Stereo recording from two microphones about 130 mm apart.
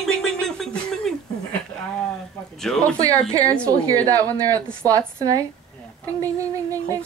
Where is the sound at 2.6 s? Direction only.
5° left (ahead or behind).